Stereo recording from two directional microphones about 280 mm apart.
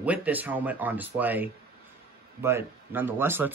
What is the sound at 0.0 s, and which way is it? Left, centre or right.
Speech, centre.